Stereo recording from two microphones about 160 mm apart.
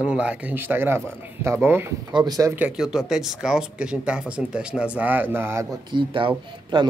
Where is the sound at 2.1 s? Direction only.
25° right (ahead or behind).